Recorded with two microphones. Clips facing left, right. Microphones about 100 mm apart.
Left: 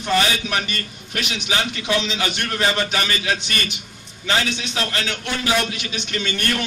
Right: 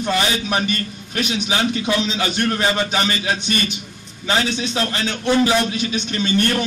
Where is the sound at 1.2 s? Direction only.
25° right (ahead or behind).